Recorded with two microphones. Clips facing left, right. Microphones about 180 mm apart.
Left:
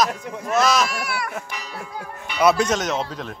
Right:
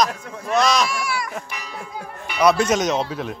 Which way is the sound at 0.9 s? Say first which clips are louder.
Right 2 dB; 60° left (ahead or behind).